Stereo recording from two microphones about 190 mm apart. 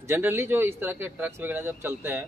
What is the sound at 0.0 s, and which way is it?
Speech, 10° right (ahead or behind).